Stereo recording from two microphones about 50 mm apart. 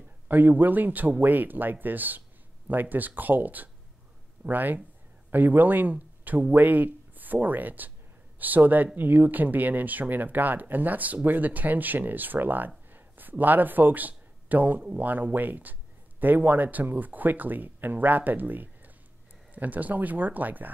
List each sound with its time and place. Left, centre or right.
0.3 s speech: right